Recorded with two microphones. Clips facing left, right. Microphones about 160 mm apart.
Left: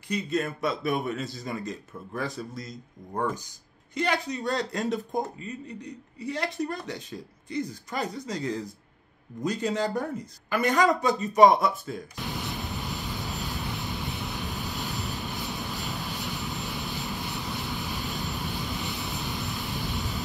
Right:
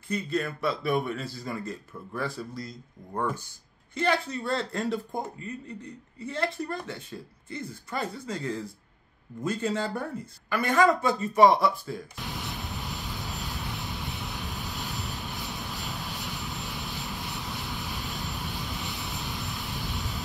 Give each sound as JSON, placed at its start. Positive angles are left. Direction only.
{"t": 0.1, "sound": "a man's voice", "side_deg": 20}
{"t": 3.9, "sound": "a man's voice", "side_deg": 15}
{"t": 12.2, "sound": "vehicle", "side_deg": 0}